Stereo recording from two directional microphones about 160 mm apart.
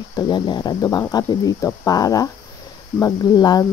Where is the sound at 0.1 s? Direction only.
25° left (ahead or behind).